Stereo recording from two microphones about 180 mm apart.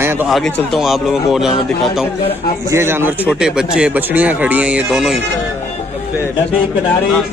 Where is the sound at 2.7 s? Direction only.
15° right (ahead or behind).